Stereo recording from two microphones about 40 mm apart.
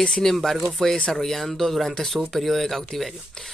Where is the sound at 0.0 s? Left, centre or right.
Centre.